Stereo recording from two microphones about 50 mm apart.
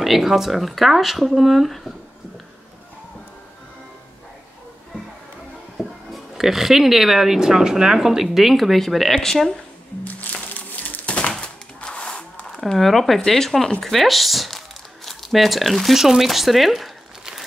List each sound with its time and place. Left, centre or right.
0.0 s speech: centre
6.1 s speech: centre
10.0 s crumpling: left
11.1 s a sound: centre
12.7 s speech: centre